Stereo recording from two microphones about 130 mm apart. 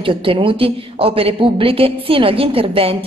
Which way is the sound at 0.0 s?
40° right (ahead or behind).